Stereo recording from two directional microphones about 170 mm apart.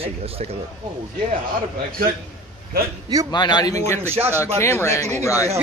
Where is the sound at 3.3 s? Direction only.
25° left (ahead or behind).